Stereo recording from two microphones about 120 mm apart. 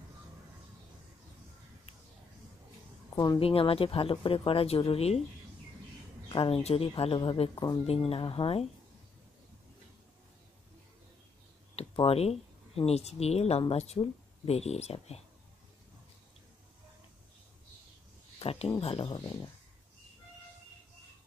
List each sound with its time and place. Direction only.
3.3 s speech: 50° left (ahead or behind)
6.2 s speech: 50° left (ahead or behind)
11.7 s speech: 50° left (ahead or behind)
18.4 s speech: 55° left (ahead or behind)